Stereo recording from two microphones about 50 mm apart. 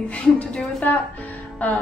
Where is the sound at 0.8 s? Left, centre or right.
Left.